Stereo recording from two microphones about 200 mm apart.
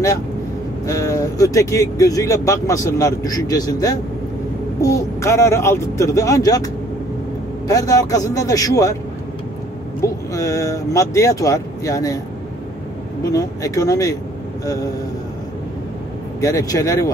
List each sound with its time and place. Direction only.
0.8 s speech: 15° left (ahead or behind)
10.0 s speech: 15° left (ahead or behind)
13.2 s speech: 15° left (ahead or behind)
16.3 s speech: 15° left (ahead or behind)